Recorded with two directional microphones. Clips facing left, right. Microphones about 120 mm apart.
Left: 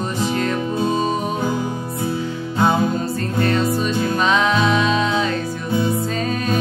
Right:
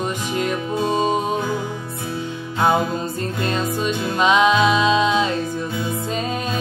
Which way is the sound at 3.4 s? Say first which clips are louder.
Left 4 dB; 15° right (ahead or behind).